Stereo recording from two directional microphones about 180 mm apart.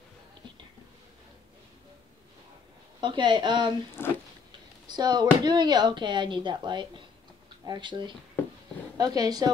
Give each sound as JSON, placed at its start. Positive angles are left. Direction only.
{"t": 3.0, "sound": "a woman's voice", "side_deg": -25}
{"t": 4.0, "sound": "speech", "side_deg": 10}
{"t": 4.5, "sound": "a woman's voice", "side_deg": -25}